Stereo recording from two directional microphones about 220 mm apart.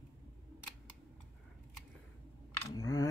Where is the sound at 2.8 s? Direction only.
15° left (ahead or behind).